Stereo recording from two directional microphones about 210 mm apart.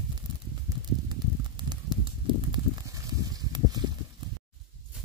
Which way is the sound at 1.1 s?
20° right (ahead or behind).